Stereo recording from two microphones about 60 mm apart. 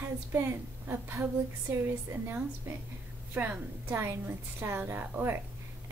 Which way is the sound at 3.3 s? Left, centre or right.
Right.